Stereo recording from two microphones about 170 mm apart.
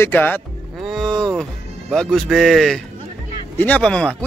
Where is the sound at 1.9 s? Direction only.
5° left (ahead or behind).